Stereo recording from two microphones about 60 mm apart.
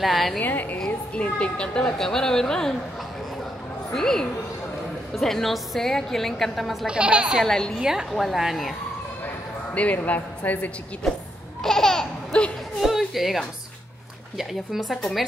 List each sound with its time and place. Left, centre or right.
0.0 s a woman's voice: centre
0.4 s a woman's voice: left
0.7 s a woman's voice: centre
3.9 s a woman's voice: centre
6.9 s a woman's voice: centre
7.4 s a woman's voice: centre
7.8 s a woman's voice: centre
9.9 s speech: left
11.6 s laughter: centre
12.8 s a sound: centre
14.4 s a woman's voice: centre